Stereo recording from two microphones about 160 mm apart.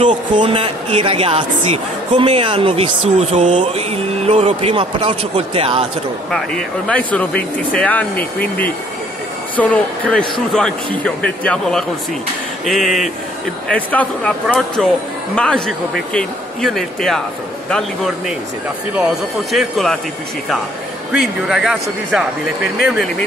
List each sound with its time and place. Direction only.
0.3 s a woman's voice: 30° right (ahead or behind)
6.3 s speech: 5° left (ahead or behind)
9.6 s speech: 10° left (ahead or behind)
21.1 s speech: 5° right (ahead or behind)